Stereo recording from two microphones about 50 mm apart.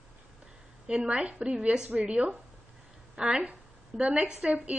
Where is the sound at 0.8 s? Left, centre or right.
Centre.